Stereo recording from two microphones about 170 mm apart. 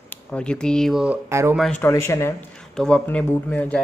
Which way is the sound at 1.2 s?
15° right (ahead or behind).